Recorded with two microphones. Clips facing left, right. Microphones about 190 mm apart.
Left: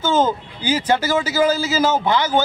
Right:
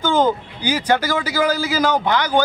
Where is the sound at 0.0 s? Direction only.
15° right (ahead or behind).